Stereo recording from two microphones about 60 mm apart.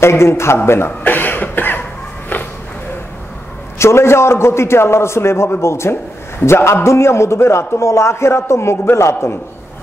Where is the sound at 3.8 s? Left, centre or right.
Left.